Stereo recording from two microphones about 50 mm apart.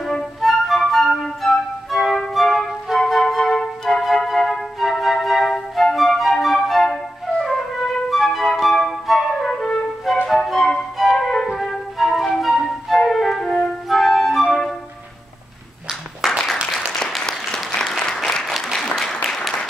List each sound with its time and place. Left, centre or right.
0.0 s flute: centre
16.3 s applause: centre